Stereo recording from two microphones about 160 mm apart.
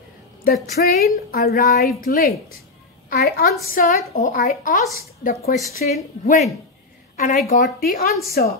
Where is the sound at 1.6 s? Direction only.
60° left (ahead or behind).